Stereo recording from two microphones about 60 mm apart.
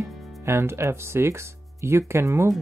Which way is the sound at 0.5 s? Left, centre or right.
Right.